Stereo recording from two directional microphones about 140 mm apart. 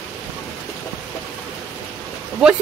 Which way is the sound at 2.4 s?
5° right (ahead or behind).